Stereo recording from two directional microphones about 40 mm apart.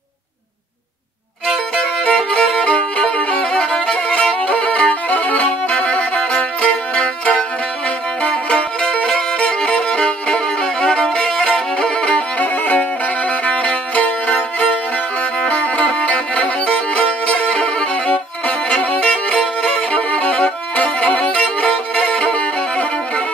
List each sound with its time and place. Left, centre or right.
1.8 s violin: left
3.5 s violin: centre
4.4 s music: left
5.1 s violin: left
8.3 s music: left
11.1 s violin: centre
12.4 s music: left
18.9 s violin: left